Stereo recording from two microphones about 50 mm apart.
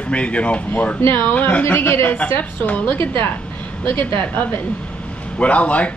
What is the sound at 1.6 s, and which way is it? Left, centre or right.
Speech, left.